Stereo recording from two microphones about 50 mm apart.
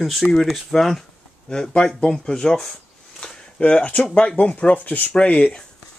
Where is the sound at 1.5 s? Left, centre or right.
Centre.